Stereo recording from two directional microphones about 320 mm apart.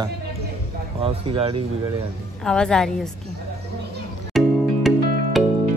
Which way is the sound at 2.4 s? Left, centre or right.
Centre.